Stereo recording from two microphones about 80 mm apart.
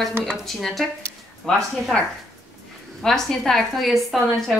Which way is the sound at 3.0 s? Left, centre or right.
Centre.